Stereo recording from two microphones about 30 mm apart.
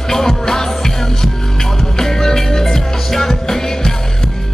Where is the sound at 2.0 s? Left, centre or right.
Centre.